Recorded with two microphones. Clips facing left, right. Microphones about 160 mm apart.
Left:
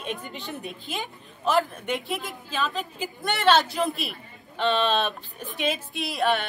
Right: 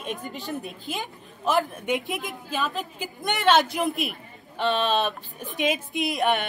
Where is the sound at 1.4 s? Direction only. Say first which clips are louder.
Even; 15° right (ahead or behind).